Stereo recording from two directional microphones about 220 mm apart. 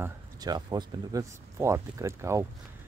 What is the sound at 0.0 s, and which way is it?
Speech, 15° right (ahead or behind).